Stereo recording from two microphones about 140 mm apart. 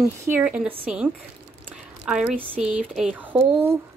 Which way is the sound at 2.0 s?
5° right (ahead or behind).